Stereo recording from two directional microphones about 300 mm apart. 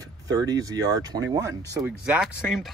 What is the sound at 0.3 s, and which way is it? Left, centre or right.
Speech, centre.